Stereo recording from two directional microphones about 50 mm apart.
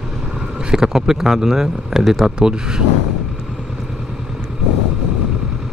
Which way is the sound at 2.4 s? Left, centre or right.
Centre.